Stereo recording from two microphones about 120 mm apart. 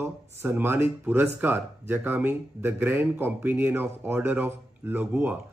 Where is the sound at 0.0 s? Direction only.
20° right (ahead or behind).